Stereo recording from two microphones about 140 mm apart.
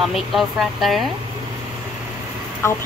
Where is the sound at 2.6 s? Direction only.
20° left (ahead or behind).